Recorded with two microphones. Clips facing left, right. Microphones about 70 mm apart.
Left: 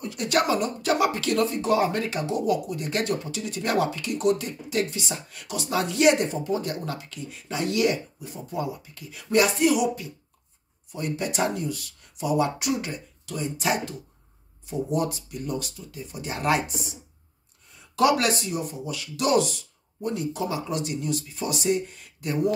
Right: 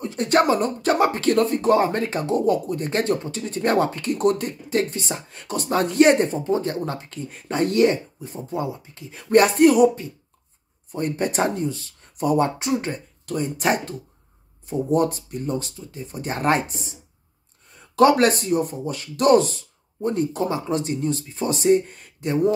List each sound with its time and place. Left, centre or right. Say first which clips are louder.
0.0 s speech: right 5 dB; right
9.3 s speech: right 6 dB; right
12.2 s speech: right 4 dB; right
17.9 s speech: right 6 dB; right
22.2 s speech: right 4 dB; right